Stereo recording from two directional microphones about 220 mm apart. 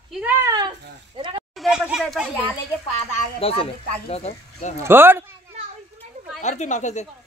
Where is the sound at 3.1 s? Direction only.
25° left (ahead or behind).